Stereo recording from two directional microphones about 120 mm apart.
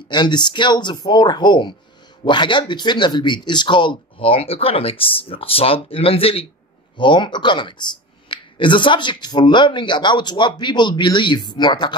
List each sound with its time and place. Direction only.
0.1 s speech: 35° left (ahead or behind)
7.0 s speech: 40° left (ahead or behind)